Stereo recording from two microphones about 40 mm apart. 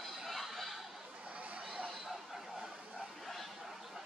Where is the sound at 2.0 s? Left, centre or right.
Centre.